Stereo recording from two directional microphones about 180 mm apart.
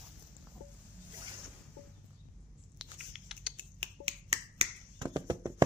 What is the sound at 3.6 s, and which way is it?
Finger snapping, 30° right (ahead or behind).